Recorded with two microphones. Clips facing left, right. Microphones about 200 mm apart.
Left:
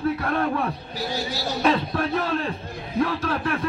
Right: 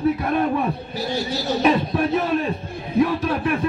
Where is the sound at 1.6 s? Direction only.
15° right (ahead or behind).